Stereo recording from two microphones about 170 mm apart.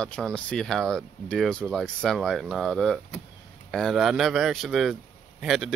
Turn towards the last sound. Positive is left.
turn(degrees=0)  # may be behind; listen again after turning